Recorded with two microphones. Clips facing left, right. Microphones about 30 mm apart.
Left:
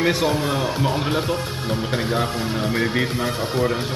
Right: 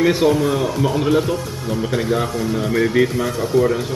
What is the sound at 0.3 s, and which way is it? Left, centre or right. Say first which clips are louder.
Speech: right 4 dB; left.